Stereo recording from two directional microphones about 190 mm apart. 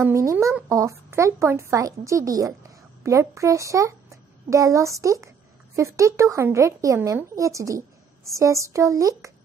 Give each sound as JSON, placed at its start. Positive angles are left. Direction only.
{"t": 0.0, "sound": "speech", "side_deg": -15}